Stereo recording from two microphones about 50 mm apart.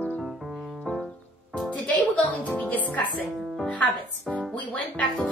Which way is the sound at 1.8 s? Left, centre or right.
Left.